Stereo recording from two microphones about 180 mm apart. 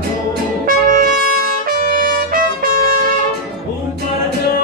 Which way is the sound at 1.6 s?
50° right (ahead or behind).